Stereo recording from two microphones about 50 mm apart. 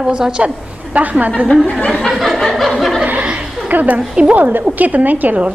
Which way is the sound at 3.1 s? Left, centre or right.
Right.